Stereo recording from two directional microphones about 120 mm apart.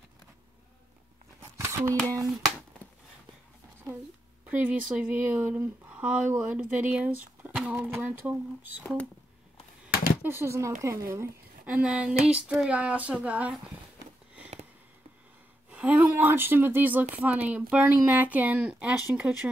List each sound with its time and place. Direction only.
1.4 s a sound: 25° right (ahead or behind)
1.9 s speech: 25° right (ahead or behind)
4.5 s speech: 15° right (ahead or behind)
10.2 s speech: 20° right (ahead or behind)
11.7 s speech: 10° right (ahead or behind)
15.7 s speech: 10° right (ahead or behind)